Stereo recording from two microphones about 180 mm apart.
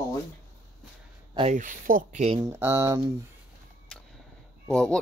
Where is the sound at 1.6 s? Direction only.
45° right (ahead or behind).